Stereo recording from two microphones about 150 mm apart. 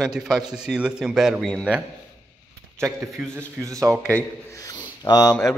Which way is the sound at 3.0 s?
Centre (ahead or behind).